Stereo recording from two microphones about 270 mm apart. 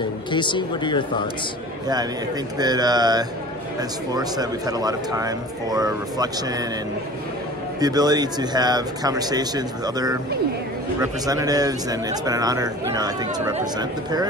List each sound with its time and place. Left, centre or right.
0.3 s speech: centre
2.5 s a man's voice: centre
7.8 s a man's voice: centre